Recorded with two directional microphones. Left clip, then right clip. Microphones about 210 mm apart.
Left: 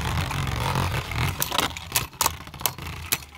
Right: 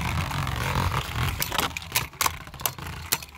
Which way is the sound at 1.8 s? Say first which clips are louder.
Even; 5° left (ahead or behind).